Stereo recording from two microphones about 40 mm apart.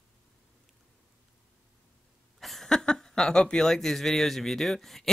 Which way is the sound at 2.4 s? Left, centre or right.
Centre.